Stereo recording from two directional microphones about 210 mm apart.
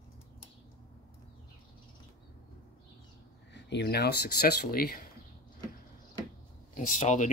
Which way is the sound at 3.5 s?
55° left (ahead or behind).